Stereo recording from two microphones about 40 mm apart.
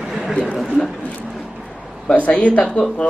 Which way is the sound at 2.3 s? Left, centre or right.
Left.